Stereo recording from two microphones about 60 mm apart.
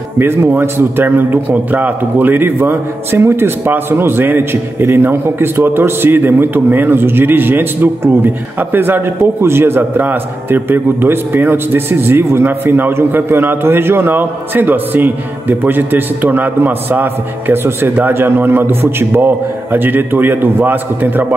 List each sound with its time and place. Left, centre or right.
0.2 s a man's voice: right
11.9 s a man's voice: right